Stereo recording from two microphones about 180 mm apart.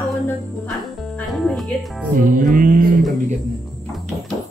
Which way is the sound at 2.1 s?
50° right (ahead or behind).